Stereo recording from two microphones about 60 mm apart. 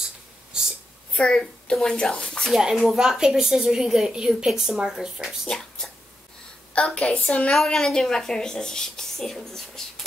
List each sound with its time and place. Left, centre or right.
1.1 s a woman's voice: centre
2.7 s a woman's voice: centre
5.5 s a sound: centre
6.7 s a woman's voice: centre
7.5 s a woman's voice: centre